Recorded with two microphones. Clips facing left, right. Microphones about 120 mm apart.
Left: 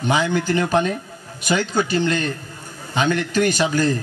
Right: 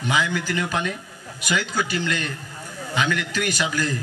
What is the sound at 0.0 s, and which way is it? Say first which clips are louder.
Speech: left 4 dB; 25° left (ahead or behind).